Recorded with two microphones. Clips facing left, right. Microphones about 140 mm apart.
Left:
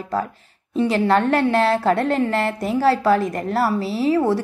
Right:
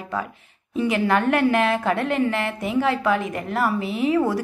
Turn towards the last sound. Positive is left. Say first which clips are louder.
# left 2 dB
turn(degrees=30)  # may be behind; listen again after turning